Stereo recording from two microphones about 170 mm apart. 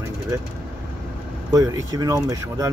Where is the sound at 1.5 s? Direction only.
20° right (ahead or behind).